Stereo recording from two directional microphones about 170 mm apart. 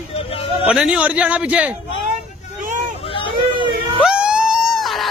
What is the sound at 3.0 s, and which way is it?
Hubbub, 30° left (ahead or behind).